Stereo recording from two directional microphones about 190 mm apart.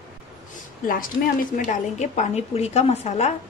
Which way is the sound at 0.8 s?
50° left (ahead or behind).